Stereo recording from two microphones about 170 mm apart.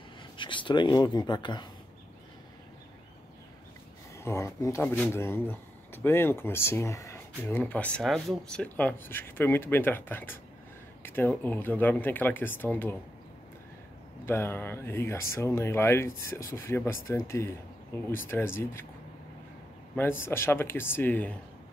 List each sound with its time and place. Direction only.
0.4 s speech: 30° left (ahead or behind)
4.2 s speech: 15° left (ahead or behind)
14.2 s speech: 15° left (ahead or behind)
20.0 s speech: 15° left (ahead or behind)